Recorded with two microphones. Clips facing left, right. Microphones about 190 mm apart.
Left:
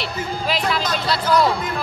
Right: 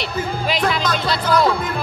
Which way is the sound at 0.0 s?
Centre (ahead or behind).